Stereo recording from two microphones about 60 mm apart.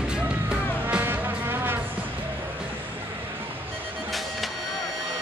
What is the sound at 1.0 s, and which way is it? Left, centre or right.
Music, right.